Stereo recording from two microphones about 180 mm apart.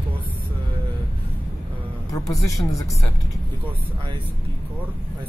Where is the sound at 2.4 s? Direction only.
20° left (ahead or behind).